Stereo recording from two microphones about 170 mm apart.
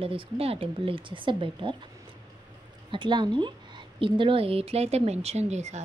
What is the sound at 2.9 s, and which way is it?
A woman's voice, 30° right (ahead or behind).